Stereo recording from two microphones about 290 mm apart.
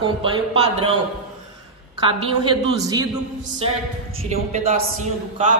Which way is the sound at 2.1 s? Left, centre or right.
Centre.